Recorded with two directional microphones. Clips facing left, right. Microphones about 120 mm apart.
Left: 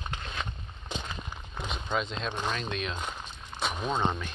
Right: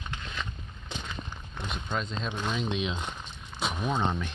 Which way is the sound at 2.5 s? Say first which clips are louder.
Right 3 dB; 15° right (ahead or behind).